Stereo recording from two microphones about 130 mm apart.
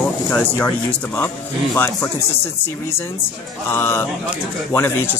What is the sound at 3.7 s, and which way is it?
Speech, 20° left (ahead or behind).